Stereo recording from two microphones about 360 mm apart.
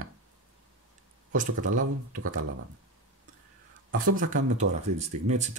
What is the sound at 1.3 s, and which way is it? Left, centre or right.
Speech, right.